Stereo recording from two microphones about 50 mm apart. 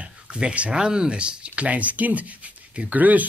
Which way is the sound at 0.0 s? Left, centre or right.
Centre.